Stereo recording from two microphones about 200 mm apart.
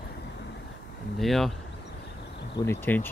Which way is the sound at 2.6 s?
10° left (ahead or behind).